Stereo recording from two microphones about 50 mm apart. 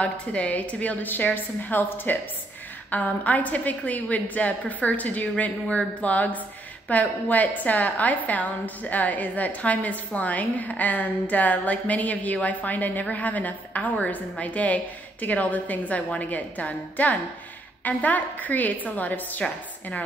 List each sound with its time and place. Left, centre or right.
0.0 s a woman's voice: left